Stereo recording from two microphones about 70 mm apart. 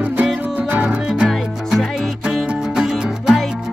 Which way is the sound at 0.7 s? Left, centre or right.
Right.